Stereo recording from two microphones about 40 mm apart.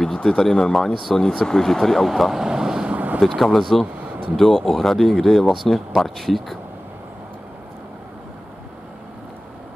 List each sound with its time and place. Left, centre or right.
0.4 s speech: centre
2.4 s vehicle: centre
2.9 s vehicle: right
3.2 s speech: centre
3.8 s a sound: right
4.4 s speech: centre